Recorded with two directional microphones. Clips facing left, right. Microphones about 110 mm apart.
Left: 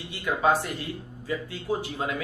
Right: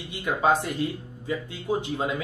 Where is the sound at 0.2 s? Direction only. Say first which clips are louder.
Right 1 dB; 20° right (ahead or behind).